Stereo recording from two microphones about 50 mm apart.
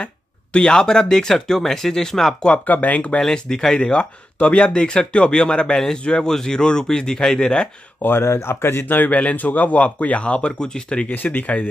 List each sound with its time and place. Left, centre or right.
0.0 s speech: left
2.5 s speech: left
3.2 s speech: centre
8.0 s speech: left; by 11.1 s centre
11.1 s speech: left